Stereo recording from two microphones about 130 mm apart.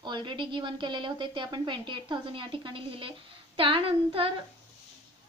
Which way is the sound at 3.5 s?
40° right (ahead or behind).